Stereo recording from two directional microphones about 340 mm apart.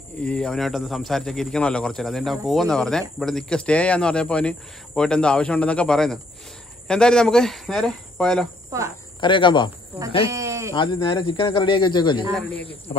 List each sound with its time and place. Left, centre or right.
0.2 s a man's voice: centre
9.2 s speech: centre
10.3 s sheep: centre
10.7 s speech: centre